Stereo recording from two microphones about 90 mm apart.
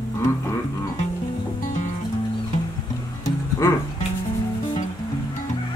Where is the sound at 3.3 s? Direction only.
35° left (ahead or behind).